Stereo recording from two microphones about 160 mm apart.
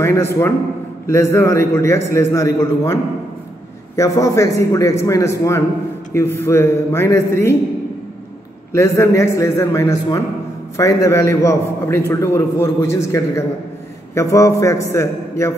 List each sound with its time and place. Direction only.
0.0 s a man's voice: 15° left (ahead or behind)
8.7 s a man's voice: 20° left (ahead or behind)